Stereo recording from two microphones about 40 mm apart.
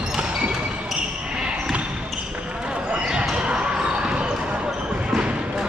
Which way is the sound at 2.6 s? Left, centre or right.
Right.